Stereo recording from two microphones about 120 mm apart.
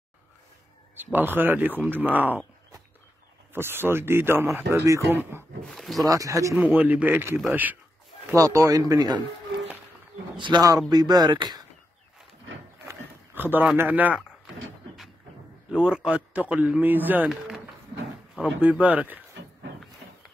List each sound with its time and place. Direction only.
0.9 s a man's voice: 15° right (ahead or behind)
3.5 s speech: 20° right (ahead or behind)
5.7 s speech: centre (ahead or behind)
6.0 s speech: 30° right (ahead or behind)
6.6 s a man's voice: 15° right (ahead or behind)
8.4 s speech: 30° right (ahead or behind)
10.3 s speech: 40° right (ahead or behind)
12.8 s a sound: 15° right (ahead or behind)
13.7 s a man's voice: 15° right (ahead or behind)
15.7 s a man's voice: 5° right (ahead or behind)
18.4 s a man's voice: 10° right (ahead or behind)